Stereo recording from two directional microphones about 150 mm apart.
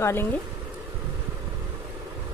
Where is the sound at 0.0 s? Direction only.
15° left (ahead or behind).